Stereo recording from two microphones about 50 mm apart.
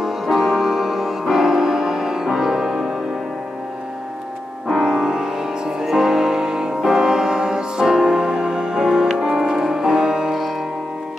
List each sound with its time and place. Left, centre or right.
0.0 s music: centre
4.6 s music: centre